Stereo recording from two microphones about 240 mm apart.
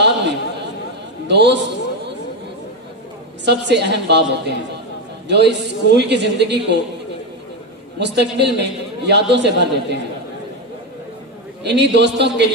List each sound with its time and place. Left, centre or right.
0.0 s chatter: right
1.2 s a man's voice: right
3.4 s a man's voice: right
8.0 s a man's voice: right
11.6 s a man's voice: right